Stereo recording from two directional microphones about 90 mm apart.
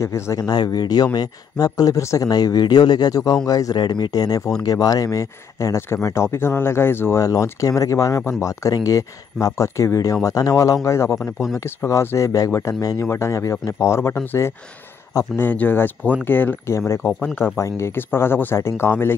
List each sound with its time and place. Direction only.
0.0 s speech: 30° left (ahead or behind)
0.5 s speech: 50° left (ahead or behind); by 11.1 s 35° left (ahead or behind)
11.1 s speech: 5° right (ahead or behind)
11.5 s speech: 30° left (ahead or behind)
16.7 s speech: 30° left (ahead or behind)
17.0 s speech: 20° left (ahead or behind)
17.6 s speech: 35° left (ahead or behind)